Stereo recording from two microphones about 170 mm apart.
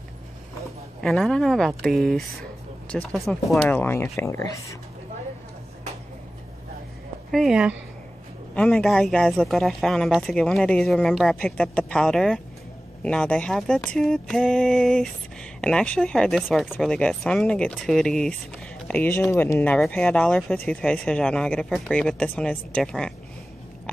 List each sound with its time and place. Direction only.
1.0 s speech: 5° left (ahead or behind)
3.6 s speech: 10° left (ahead or behind)
7.2 s speech: centre (ahead or behind)